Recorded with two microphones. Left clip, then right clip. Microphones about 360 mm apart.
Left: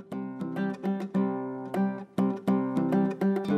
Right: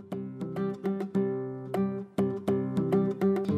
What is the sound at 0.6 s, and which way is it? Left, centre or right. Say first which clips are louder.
Music: right 1 dB; left.